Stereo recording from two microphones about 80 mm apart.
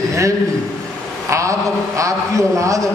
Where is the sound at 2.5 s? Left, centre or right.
Right.